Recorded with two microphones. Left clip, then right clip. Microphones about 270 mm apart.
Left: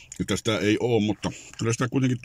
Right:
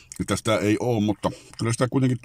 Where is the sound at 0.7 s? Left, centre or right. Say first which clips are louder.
Left 1 dB; right.